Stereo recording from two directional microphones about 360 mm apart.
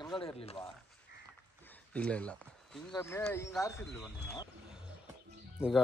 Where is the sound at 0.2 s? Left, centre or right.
Centre.